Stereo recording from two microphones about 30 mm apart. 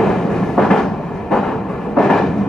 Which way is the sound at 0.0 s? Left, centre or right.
Centre.